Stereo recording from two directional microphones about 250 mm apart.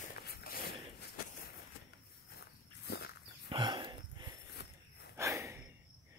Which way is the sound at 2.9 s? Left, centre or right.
Left.